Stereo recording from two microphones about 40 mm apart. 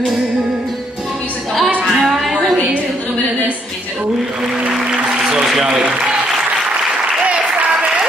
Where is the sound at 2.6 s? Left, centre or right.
Right.